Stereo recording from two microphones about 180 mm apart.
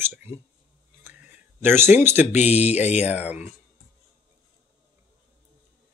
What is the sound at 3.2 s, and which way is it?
Speech, 10° right (ahead or behind).